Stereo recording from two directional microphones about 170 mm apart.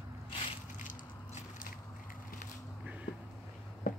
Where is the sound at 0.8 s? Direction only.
45° left (ahead or behind).